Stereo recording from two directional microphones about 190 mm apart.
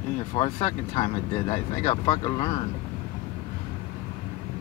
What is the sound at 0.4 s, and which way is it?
Speech, 30° left (ahead or behind).